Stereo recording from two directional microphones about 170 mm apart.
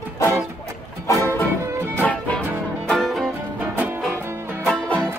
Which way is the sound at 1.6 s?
15° right (ahead or behind).